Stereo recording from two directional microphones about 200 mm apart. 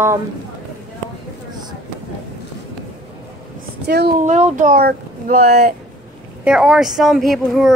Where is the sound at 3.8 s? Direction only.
55° right (ahead or behind).